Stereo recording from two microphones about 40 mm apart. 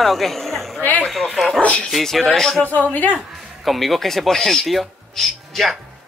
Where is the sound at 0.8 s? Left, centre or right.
Left.